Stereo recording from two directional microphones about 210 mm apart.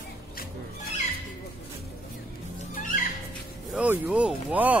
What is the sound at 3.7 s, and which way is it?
Speech, 10° right (ahead or behind).